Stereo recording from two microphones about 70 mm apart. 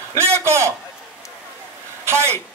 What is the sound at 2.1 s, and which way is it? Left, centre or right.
Speech, right.